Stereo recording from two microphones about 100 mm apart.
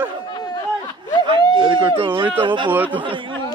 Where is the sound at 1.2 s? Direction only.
55° right (ahead or behind).